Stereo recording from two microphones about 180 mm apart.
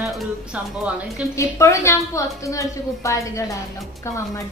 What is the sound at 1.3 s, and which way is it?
A woman's voice, 15° left (ahead or behind).